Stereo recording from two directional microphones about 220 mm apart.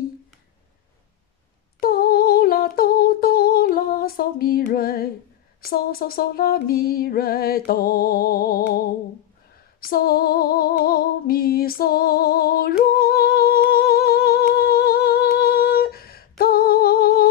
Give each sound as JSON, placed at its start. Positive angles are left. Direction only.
{"t": 1.8, "sound": "humming", "side_deg": 40}
{"t": 5.6, "sound": "music", "side_deg": 40}
{"t": 9.8, "sound": "female singing", "side_deg": 40}